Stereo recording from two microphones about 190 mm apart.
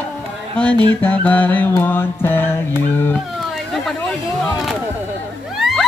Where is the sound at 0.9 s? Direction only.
10° left (ahead or behind).